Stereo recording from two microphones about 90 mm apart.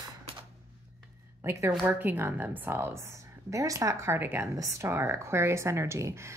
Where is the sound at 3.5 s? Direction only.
40° right (ahead or behind).